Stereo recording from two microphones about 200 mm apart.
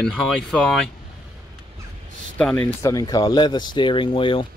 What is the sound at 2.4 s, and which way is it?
Speech, 5° left (ahead or behind).